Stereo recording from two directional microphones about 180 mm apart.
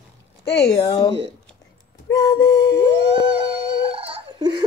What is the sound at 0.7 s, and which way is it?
Speech, 30° left (ahead or behind).